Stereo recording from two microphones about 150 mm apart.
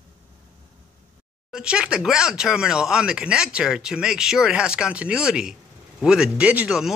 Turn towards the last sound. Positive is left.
turn(degrees=-5)  # may be behind; listen again after turning